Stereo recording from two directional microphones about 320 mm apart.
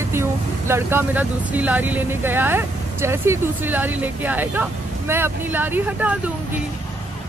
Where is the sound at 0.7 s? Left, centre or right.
Centre.